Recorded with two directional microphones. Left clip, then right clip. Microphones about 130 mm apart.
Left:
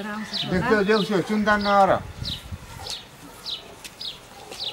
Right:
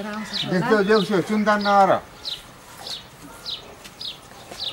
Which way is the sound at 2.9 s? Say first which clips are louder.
Right 1 dB; centre (ahead or behind).